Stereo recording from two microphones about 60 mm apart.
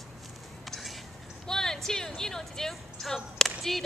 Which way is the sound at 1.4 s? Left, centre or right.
Centre.